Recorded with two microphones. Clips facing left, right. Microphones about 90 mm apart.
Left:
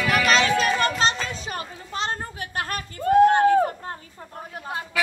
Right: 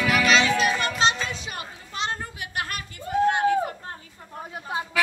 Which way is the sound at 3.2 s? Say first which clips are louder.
Left 4 dB; 40° left (ahead or behind).